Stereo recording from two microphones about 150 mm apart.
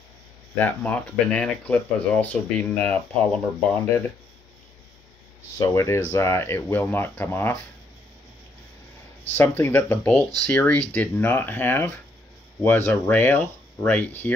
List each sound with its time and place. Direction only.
0.6 s speech: 5° left (ahead or behind)
5.6 s speech: 20° left (ahead or behind)
9.2 s speech: 15° left (ahead or behind)